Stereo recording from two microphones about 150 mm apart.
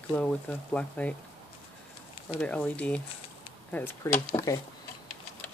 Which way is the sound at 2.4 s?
10° left (ahead or behind).